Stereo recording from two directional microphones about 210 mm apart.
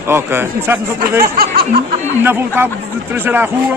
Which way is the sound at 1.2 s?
45° right (ahead or behind).